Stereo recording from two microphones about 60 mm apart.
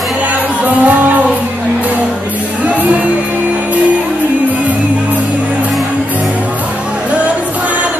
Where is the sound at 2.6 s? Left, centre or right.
Right.